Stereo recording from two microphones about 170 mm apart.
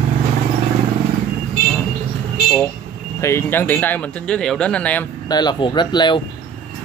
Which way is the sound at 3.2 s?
15° left (ahead or behind).